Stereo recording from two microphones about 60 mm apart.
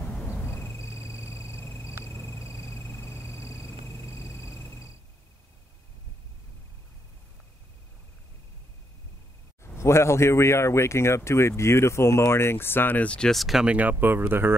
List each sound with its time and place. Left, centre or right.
0.4 s a sound: left
9.6 s speech: left
13.0 s speech: centre
13.3 s speech: centre
13.7 s speech: right
13.9 s speech: right